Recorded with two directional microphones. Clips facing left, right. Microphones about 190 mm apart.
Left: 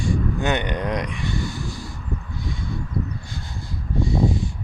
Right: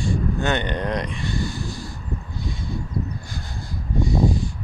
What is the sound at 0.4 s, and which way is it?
Speech, 15° left (ahead or behind).